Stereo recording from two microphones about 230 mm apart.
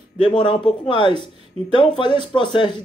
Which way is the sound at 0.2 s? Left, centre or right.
Left.